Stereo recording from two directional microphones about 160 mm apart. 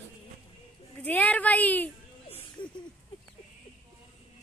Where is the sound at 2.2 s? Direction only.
35° left (ahead or behind).